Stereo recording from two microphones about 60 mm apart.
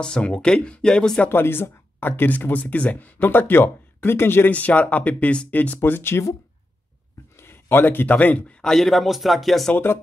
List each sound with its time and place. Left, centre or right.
0.0 s speech: centre
1.3 s speech: left
4.5 s speech: left
7.3 s speech: left
8.6 s speech: centre
9.8 s speech: left